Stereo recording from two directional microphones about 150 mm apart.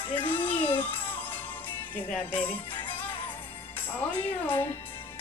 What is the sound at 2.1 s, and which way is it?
Speech, 10° left (ahead or behind).